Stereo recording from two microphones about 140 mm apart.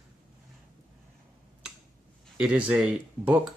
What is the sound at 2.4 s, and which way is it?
Speech, 10° right (ahead or behind).